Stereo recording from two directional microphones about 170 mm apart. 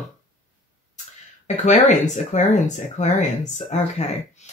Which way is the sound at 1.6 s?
45° left (ahead or behind).